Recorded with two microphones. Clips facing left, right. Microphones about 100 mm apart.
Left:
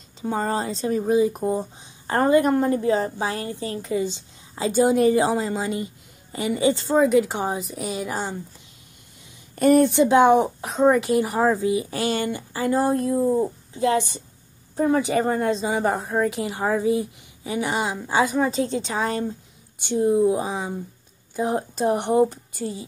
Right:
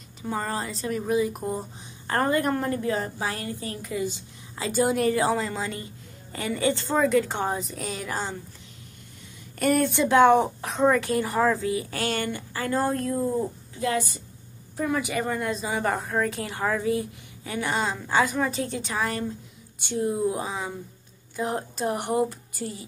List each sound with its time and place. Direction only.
0.2 s speech: 25° left (ahead or behind)
9.6 s speech: 20° left (ahead or behind)